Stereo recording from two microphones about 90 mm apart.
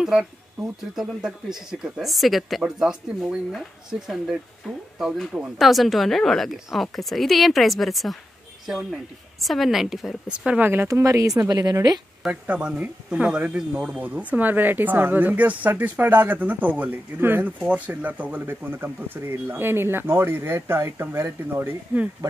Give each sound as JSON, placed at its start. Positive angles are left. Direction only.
{"t": 0.0, "sound": "speech", "side_deg": -5}
{"t": 4.9, "sound": "speech", "side_deg": -5}
{"t": 10.9, "sound": "speech", "side_deg": -35}
{"t": 12.3, "sound": "speech", "side_deg": -10}